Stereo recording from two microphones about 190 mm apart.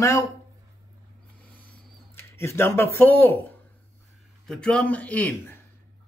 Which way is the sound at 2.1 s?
15° left (ahead or behind).